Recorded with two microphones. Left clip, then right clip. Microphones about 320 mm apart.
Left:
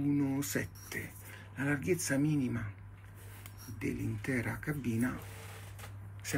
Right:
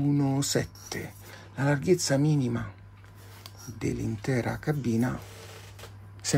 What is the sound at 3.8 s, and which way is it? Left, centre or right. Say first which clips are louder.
Speech: right 6 dB; centre.